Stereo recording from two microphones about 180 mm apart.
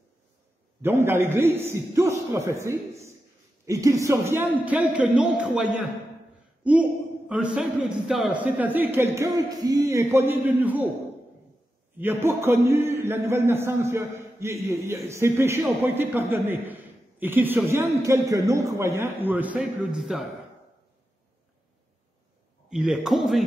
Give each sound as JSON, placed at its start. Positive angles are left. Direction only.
{"t": 0.8, "sound": "a man's voice", "side_deg": -15}
{"t": 12.0, "sound": "a man's voice", "side_deg": -10}
{"t": 22.7, "sound": "a man's voice", "side_deg": 0}